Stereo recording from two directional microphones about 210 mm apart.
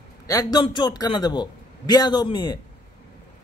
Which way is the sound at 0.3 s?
15° left (ahead or behind).